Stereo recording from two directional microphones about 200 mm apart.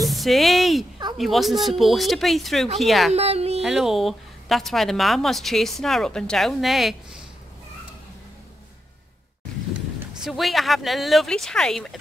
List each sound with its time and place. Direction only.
0.0 s a sound: centre (ahead or behind)
1.1 s speech: centre (ahead or behind)
3.1 s speech: 30° right (ahead or behind)
3.6 s speech: centre (ahead or behind)
10.2 s speech: centre (ahead or behind)